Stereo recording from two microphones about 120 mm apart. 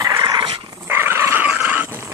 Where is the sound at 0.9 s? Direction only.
20° right (ahead or behind).